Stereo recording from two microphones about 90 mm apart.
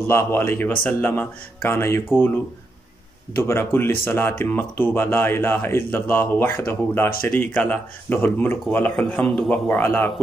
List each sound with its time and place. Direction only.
0.0 s a man's voice: 25° left (ahead or behind)